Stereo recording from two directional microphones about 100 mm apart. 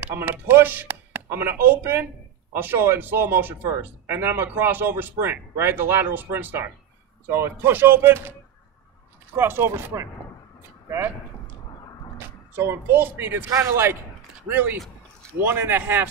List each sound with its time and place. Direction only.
0.0 s speech: 20° right (ahead or behind)
12.2 s speech: 25° right (ahead or behind)